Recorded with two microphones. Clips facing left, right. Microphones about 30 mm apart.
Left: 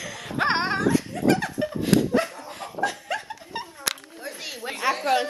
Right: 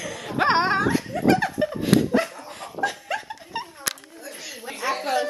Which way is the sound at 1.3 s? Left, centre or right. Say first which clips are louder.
Right 3 dB; centre.